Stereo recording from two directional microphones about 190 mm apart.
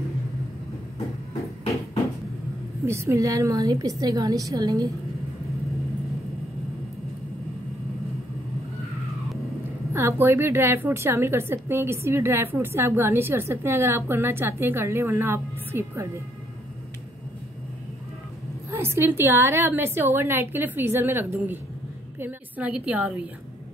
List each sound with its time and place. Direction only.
2.9 s a woman's voice: 15° right (ahead or behind)
9.9 s a woman's voice: 10° right (ahead or behind)
18.7 s a woman's voice: 15° right (ahead or behind)